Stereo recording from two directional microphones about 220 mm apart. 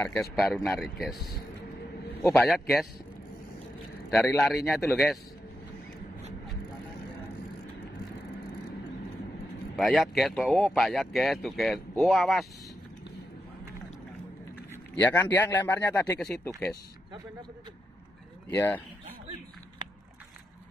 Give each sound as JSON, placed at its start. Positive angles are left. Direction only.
{"t": 0.0, "sound": "speech", "side_deg": 5}
{"t": 4.4, "sound": "speech", "side_deg": 0}
{"t": 9.8, "sound": "speech", "side_deg": 0}
{"t": 14.7, "sound": "a man's voice", "side_deg": 5}
{"t": 18.5, "sound": "a man's voice", "side_deg": 10}
{"t": 19.8, "sound": "a sound", "side_deg": -20}